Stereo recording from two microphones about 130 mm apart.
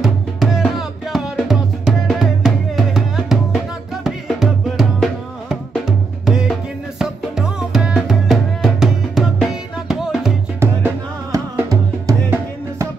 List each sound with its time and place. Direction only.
0.0 s music: centre (ahead or behind)
10.6 s music: 20° right (ahead or behind)